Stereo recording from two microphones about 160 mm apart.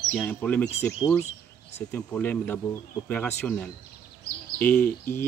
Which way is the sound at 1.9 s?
10° left (ahead or behind).